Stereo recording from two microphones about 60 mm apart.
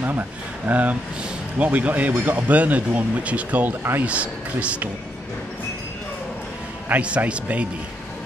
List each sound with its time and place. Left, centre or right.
0.0 s speech: right
6.9 s speech: right